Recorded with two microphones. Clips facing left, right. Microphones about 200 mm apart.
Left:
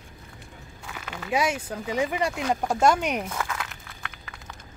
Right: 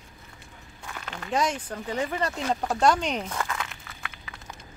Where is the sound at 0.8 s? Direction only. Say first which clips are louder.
Left 2 dB; 5° left (ahead or behind).